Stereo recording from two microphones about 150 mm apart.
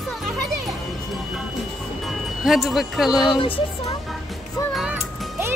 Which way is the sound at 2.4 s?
Centre (ahead or behind).